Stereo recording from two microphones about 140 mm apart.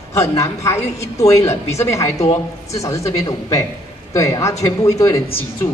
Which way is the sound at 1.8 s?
20° left (ahead or behind).